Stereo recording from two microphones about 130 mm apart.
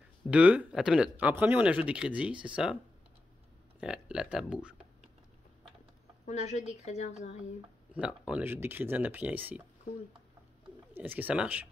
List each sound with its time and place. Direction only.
0.3 s speech: 10° right (ahead or behind)
3.8 s speech: 5° right (ahead or behind)
6.2 s a woman's voice: 65° left (ahead or behind)
7.9 s speech: 10° right (ahead or behind)
11.0 s speech: 15° right (ahead or behind)